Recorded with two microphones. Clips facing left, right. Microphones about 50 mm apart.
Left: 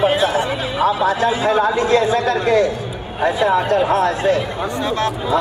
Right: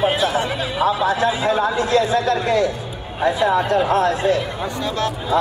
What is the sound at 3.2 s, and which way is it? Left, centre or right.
Speech, left.